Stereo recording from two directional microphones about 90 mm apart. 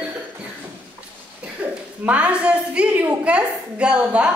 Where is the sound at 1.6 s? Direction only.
15° right (ahead or behind).